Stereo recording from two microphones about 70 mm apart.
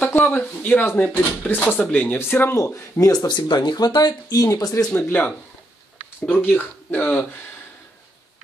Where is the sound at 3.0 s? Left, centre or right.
Left.